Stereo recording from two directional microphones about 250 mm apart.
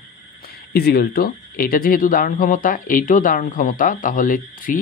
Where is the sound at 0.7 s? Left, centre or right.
Left.